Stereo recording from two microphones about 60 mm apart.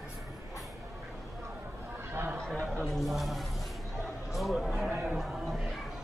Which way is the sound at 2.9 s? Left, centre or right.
Centre.